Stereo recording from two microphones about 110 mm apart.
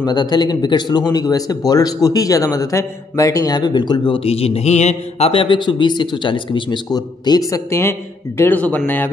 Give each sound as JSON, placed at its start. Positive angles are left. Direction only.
{"t": 0.0, "sound": "speech", "side_deg": 40}
{"t": 4.2, "sound": "a man's voice", "side_deg": 65}
{"t": 8.4, "sound": "speech", "side_deg": 15}